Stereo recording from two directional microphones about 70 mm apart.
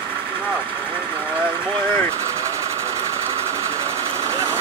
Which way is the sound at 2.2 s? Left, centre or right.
Right.